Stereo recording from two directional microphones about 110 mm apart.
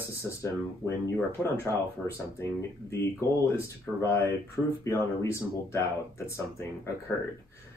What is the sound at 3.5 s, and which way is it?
Speech, 25° left (ahead or behind).